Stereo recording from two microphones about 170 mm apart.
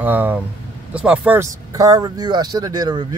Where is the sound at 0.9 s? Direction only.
5° right (ahead or behind).